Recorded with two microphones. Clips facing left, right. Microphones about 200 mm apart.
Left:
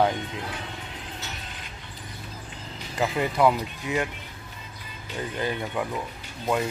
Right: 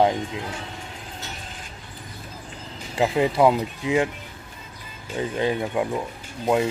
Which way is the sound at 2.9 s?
25° right (ahead or behind).